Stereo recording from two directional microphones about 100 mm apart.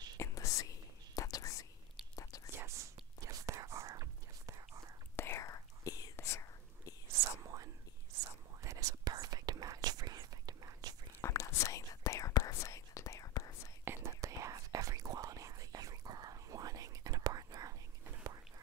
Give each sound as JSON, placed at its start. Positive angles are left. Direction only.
{"t": 0.2, "sound": "whispering", "side_deg": 30}
{"t": 2.5, "sound": "whispering", "side_deg": -30}
{"t": 5.1, "sound": "whispering", "side_deg": 25}
{"t": 7.1, "sound": "whispering", "side_deg": -35}
{"t": 11.1, "sound": "whispering", "side_deg": 30}
{"t": 13.8, "sound": "whispering", "side_deg": -30}